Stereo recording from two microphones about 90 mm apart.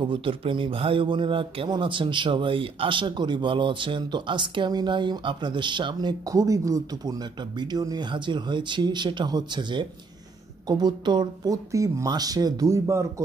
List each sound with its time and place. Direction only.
0.0 s a man's voice: 75° right (ahead or behind)
6.2 s speech: 40° right (ahead or behind)
8.1 s a man's voice: 60° right (ahead or behind)
11.5 s speech: 40° right (ahead or behind)